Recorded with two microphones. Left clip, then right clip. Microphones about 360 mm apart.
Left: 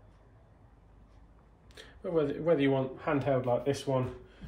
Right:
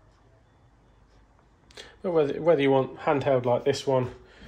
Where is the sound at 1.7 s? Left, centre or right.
Centre.